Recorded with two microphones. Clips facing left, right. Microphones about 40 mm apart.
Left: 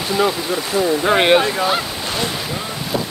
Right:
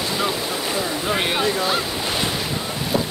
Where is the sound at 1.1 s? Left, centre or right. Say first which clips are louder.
Left 9 dB; left.